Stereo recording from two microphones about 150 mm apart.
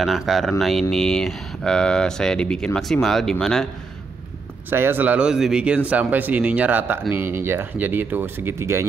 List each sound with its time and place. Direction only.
0.0 s speech: centre (ahead or behind)
4.6 s speech: 15° right (ahead or behind)